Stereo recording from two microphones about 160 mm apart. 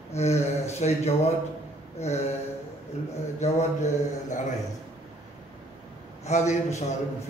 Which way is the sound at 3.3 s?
45° left (ahead or behind).